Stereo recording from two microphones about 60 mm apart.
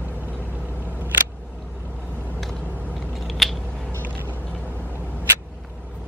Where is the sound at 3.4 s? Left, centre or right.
Centre.